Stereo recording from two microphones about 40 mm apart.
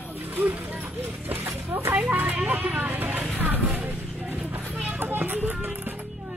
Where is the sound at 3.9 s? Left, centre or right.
Right.